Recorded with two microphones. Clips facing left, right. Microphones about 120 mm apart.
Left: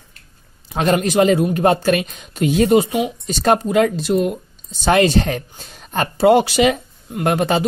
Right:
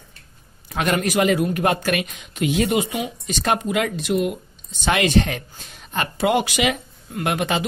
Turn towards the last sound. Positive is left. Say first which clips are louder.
# left 5 dB
turn(degrees=35)  # may be behind; listen again after turning